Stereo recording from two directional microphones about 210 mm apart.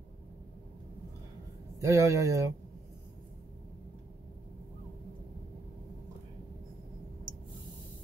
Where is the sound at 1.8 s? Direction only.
15° right (ahead or behind).